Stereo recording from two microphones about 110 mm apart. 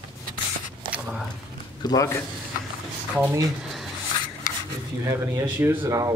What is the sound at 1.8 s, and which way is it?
Speech, 40° left (ahead or behind).